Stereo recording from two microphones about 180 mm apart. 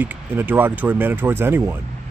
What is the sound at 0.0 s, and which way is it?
Speech, 10° right (ahead or behind).